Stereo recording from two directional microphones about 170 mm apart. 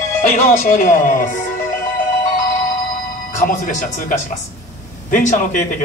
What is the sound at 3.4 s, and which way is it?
Speech, 50° left (ahead or behind).